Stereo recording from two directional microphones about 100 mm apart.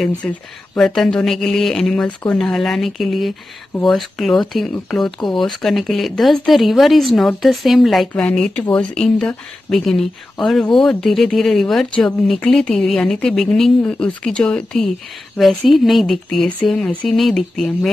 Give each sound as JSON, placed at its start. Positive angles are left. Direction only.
{"t": 0.0, "sound": "speech", "side_deg": 10}
{"t": 8.3, "sound": "speech", "side_deg": 10}